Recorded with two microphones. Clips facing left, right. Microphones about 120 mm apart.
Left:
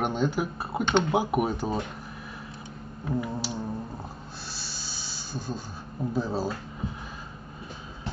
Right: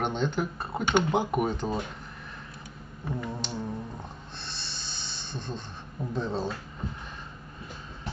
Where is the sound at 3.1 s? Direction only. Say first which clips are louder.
Left 4 dB; 5° left (ahead or behind).